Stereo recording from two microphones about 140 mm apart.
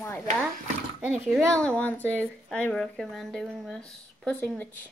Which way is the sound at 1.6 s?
10° left (ahead or behind).